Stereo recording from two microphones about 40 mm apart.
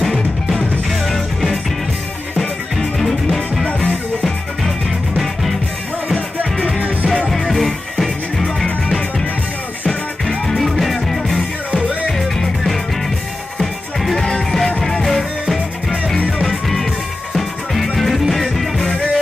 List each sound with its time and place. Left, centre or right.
0.8 s music: centre
3.6 s music: left
4.6 s music: centre
7.3 s music: centre
10.2 s music: centre
10.6 s music: centre
13.6 s music: centre
16.4 s music: centre
17.9 s music: centre